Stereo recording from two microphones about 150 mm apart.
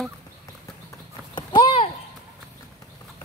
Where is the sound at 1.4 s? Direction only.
30° left (ahead or behind).